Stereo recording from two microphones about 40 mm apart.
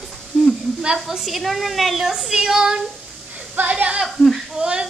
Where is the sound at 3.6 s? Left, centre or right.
Right.